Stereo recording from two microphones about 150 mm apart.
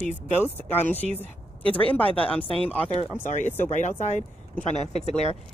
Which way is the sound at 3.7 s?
50° left (ahead or behind).